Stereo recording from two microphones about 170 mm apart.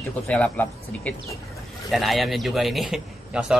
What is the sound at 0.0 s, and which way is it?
A man's voice, 10° left (ahead or behind).